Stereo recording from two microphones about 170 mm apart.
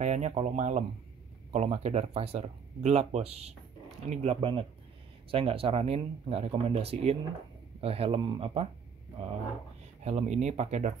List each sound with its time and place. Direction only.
0.0 s speech: 40° right (ahead or behind)
10.0 s speech: 40° right (ahead or behind)